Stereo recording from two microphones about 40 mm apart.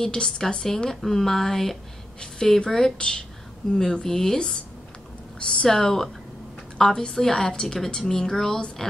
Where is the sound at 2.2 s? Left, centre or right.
Centre.